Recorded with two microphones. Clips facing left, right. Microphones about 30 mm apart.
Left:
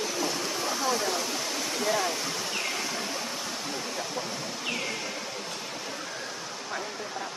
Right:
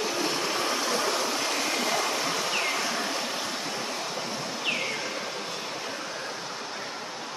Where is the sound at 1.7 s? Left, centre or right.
Right.